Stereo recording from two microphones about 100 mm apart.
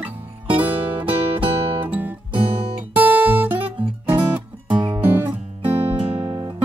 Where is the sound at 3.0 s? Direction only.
15° right (ahead or behind).